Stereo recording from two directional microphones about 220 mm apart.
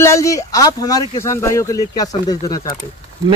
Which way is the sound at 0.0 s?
15° left (ahead or behind).